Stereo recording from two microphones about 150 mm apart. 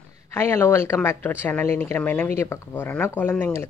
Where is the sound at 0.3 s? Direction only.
15° left (ahead or behind).